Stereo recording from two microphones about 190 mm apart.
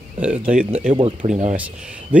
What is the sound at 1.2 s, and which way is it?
Speech, 40° right (ahead or behind).